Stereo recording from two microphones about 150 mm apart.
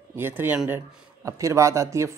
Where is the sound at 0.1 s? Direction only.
15° right (ahead or behind).